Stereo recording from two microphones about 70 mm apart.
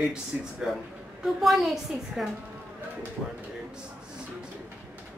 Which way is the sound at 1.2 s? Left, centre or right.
Centre.